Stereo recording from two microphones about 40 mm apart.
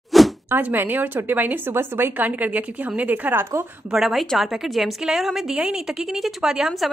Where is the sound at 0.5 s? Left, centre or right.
Right.